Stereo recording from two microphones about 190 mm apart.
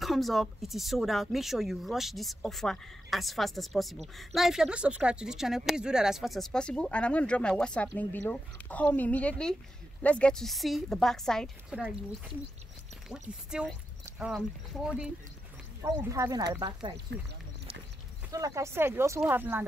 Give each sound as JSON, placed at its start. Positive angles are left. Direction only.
{"t": 0.0, "sound": "speech", "side_deg": 0}
{"t": 13.5, "sound": "speech", "side_deg": -5}
{"t": 15.8, "sound": "speech", "side_deg": -15}
{"t": 18.3, "sound": "speech", "side_deg": -15}